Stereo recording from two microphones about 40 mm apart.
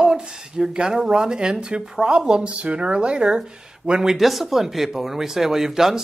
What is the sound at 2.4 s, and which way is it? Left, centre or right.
Speech, right.